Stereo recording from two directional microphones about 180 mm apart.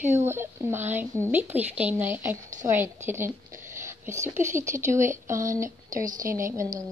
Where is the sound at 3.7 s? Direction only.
15° right (ahead or behind).